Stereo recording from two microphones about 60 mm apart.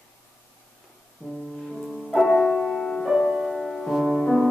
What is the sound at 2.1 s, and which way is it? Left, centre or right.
Music, centre.